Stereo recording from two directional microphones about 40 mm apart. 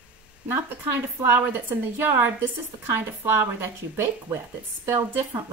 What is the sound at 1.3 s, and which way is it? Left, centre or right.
A woman's voice, right.